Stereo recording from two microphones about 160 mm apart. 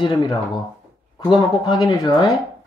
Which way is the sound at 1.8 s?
25° left (ahead or behind).